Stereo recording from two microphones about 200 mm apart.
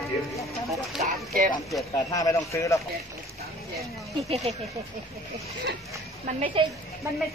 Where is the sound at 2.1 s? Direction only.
15° left (ahead or behind).